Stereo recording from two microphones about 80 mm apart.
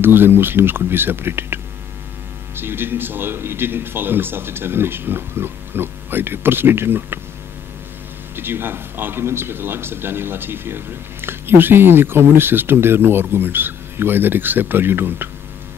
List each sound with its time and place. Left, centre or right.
0.0 s speech: right
8.4 s speech: right